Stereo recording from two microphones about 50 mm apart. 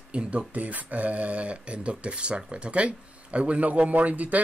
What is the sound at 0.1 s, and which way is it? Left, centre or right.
Speech, right.